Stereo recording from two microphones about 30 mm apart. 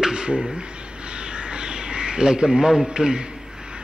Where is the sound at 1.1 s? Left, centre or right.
Right.